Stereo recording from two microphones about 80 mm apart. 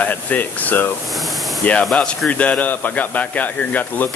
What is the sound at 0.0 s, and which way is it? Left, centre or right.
Speech, left.